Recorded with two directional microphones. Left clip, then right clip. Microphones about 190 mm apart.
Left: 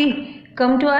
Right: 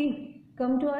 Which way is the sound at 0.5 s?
5° right (ahead or behind).